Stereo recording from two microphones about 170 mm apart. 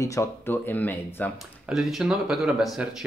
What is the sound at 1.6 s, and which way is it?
Speech, centre (ahead or behind).